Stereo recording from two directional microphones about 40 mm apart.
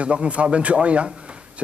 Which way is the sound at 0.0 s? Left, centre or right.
Right.